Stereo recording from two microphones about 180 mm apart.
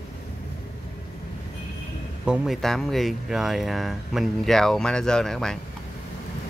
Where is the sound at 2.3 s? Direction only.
Centre (ahead or behind).